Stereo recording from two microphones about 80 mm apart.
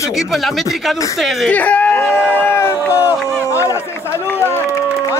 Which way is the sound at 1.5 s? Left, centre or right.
Centre.